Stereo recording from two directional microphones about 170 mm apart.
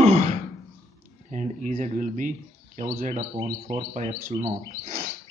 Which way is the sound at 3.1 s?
30° right (ahead or behind).